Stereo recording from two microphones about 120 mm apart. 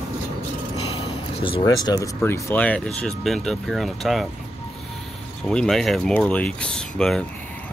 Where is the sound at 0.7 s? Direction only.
55° left (ahead or behind); by 2.0 s 35° left (ahead or behind).